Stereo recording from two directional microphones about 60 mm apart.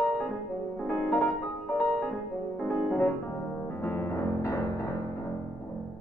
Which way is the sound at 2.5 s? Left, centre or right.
Centre.